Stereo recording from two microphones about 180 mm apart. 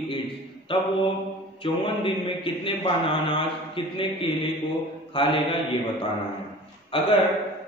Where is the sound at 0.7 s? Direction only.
30° left (ahead or behind).